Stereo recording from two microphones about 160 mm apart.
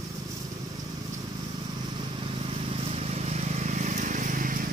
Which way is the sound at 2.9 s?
40° right (ahead or behind).